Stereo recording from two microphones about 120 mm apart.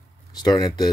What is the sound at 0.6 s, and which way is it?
Speech, 35° left (ahead or behind).